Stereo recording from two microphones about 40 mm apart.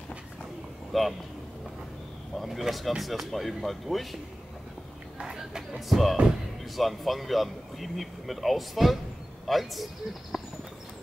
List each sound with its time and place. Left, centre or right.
0.9 s speech: centre
2.3 s speech: centre
5.2 s a sound: centre
5.8 s speech: centre